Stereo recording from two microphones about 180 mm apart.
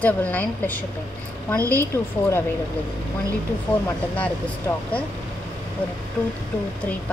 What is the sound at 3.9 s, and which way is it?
Speech, 10° left (ahead or behind).